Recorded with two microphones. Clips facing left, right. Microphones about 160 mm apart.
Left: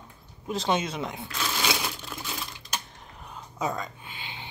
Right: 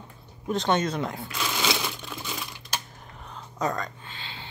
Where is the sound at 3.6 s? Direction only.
5° left (ahead or behind).